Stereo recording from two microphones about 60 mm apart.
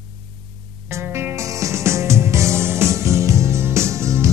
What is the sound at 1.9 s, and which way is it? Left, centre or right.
Music, right.